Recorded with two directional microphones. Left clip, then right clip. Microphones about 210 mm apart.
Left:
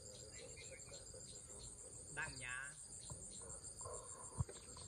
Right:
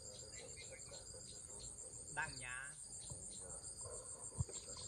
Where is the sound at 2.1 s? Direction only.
5° right (ahead or behind).